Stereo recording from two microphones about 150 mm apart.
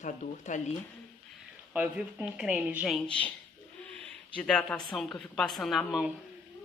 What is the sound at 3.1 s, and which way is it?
Speech, 10° left (ahead or behind).